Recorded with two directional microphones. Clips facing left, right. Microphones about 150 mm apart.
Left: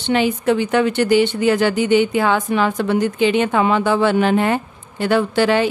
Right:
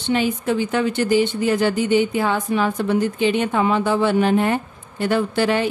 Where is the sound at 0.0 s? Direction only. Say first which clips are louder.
Left 3 dB; 75° left (ahead or behind).